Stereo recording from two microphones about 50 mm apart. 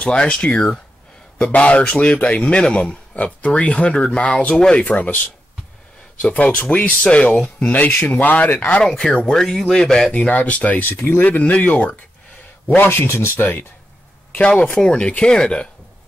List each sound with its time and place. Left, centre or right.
0.0 s speech: left
9.1 s speech: centre
10.1 s speech: left
13.0 s speech: left
14.4 s speech: left